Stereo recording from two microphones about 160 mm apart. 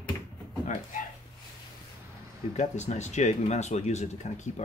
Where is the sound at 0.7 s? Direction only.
55° left (ahead or behind).